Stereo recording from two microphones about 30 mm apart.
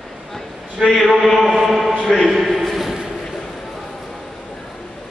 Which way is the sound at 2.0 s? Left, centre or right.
Centre.